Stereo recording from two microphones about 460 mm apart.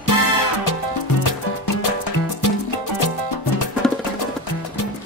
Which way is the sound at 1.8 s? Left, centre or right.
Left.